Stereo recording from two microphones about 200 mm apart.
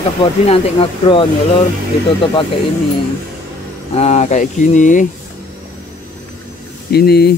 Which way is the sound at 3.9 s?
35° left (ahead or behind).